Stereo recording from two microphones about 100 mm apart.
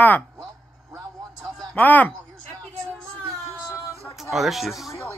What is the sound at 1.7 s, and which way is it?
Speech, 15° left (ahead or behind).